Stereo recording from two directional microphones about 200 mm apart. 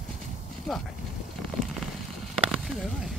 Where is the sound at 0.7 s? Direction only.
Centre (ahead or behind).